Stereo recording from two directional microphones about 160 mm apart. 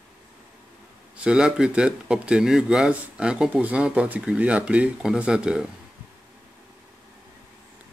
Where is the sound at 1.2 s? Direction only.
5° right (ahead or behind).